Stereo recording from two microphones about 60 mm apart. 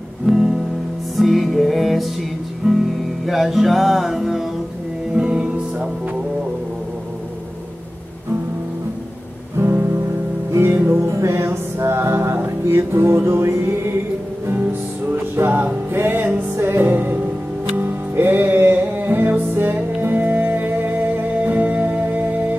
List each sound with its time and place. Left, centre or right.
0.3 s music: centre
5.1 s music: centre
9.6 s music: right
14.5 s music: right